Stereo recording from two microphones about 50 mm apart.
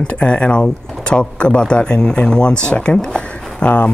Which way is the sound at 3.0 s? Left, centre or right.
Left.